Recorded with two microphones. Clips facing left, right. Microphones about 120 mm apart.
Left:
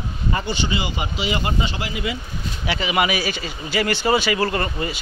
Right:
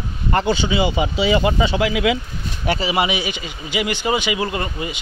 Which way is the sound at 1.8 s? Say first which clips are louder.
Right 8 dB; 90° right.